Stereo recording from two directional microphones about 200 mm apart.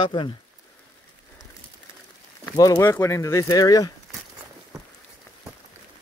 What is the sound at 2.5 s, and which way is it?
Speech, 15° left (ahead or behind).